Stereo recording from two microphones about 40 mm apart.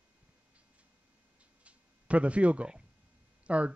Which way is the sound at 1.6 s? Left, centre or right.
Right.